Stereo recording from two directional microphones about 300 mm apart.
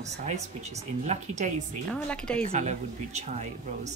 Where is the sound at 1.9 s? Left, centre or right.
Centre.